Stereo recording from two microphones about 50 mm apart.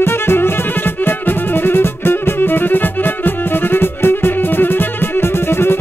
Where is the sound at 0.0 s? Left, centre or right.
Left.